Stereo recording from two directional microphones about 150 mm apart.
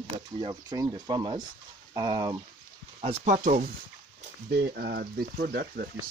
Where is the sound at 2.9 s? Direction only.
55° right (ahead or behind).